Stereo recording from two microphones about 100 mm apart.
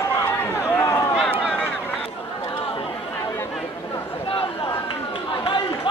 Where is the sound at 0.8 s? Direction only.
30° left (ahead or behind).